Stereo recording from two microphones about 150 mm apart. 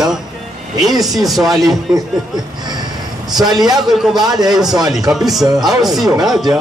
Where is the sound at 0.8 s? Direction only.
Centre (ahead or behind).